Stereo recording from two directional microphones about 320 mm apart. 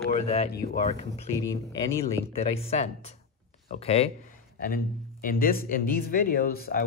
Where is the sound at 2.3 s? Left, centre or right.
Centre.